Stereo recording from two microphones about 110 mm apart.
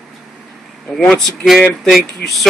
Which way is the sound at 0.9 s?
5° left (ahead or behind).